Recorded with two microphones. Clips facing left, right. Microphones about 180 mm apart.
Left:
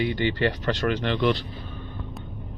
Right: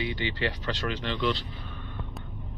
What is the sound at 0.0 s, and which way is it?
Speech, 50° left (ahead or behind).